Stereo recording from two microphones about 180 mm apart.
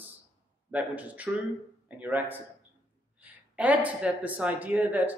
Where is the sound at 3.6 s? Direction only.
10° right (ahead or behind).